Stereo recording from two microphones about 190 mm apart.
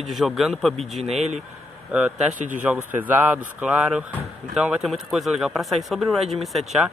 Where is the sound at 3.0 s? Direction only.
10° right (ahead or behind).